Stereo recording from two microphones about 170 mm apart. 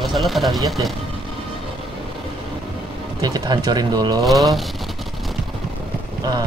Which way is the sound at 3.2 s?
25° right (ahead or behind).